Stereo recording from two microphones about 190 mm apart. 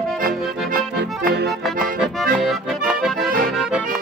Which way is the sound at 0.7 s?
45° right (ahead or behind).